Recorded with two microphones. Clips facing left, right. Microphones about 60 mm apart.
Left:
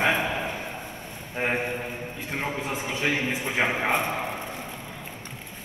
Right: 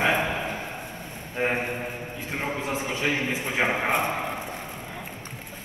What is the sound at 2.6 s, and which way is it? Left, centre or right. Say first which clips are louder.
Speech: right 1 dB; right.